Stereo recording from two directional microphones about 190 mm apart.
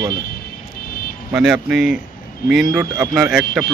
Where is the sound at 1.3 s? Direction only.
5° right (ahead or behind).